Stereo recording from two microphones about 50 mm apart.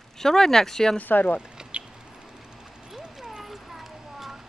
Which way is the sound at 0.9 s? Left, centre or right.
Left.